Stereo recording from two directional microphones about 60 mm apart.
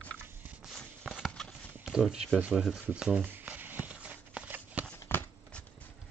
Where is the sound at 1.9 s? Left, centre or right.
Centre.